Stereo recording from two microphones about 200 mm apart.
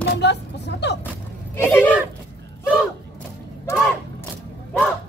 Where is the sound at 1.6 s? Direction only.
10° left (ahead or behind).